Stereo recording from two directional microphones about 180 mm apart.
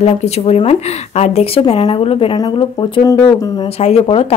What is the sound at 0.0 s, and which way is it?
A woman's voice, 35° left (ahead or behind).